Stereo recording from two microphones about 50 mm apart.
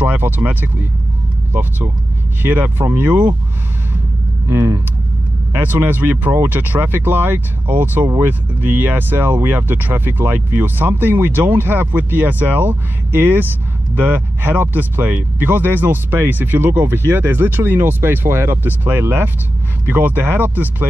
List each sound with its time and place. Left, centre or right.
0.0 s speech: right
4.5 s speech: right
5.5 s speech: right